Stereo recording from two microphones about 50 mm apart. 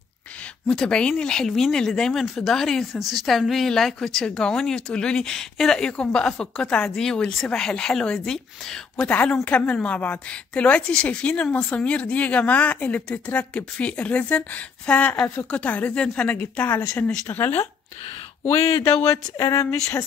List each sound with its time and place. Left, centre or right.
0.7 s speech: centre
2.9 s speech: centre
9.0 s a woman's voice: left
15.9 s a woman's voice: centre
16.3 s speech: left
18.4 s a sound: left
19.3 s speech: left